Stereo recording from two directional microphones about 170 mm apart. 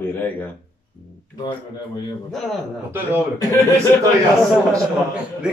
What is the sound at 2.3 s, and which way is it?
Speech, centre (ahead or behind).